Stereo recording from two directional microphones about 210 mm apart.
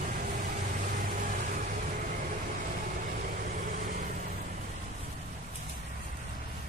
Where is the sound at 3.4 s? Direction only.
40° right (ahead or behind).